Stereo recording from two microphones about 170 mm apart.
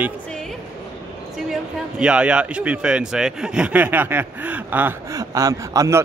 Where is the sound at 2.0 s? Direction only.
5° right (ahead or behind).